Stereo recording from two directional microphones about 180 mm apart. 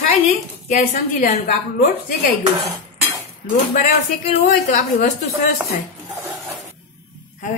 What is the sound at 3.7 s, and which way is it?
A woman's voice, 45° left (ahead or behind).